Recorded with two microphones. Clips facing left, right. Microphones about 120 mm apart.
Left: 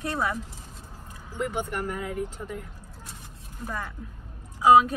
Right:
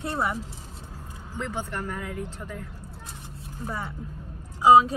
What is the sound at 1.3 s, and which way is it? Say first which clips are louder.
Speech: left 3 dB; 15° left (ahead or behind).